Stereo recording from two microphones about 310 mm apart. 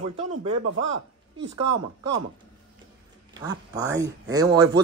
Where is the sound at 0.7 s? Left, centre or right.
Right.